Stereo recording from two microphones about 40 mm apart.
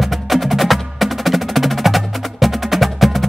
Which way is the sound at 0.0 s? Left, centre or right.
Centre.